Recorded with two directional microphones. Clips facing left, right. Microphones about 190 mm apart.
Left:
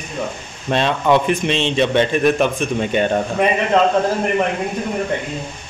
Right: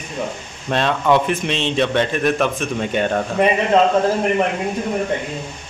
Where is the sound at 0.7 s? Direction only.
Centre (ahead or behind).